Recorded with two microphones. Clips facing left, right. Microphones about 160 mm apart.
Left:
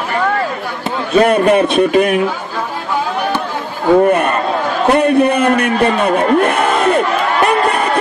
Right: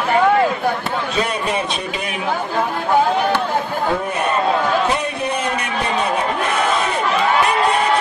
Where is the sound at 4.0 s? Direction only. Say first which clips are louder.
Left 8 dB; 55° left (ahead or behind).